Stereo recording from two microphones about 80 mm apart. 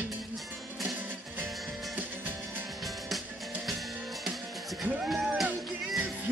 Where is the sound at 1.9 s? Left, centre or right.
Right.